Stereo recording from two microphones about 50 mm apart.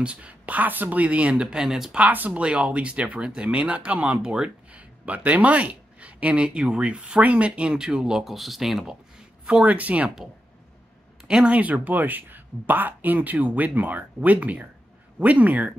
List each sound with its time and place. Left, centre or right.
0.0 s speech: right
2.0 s speech: right
2.4 s speech: right
9.5 s speech: right
11.2 s speech: centre
11.5 s speech: right